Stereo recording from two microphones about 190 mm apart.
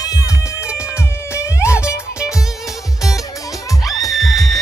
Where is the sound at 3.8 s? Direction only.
Centre (ahead or behind).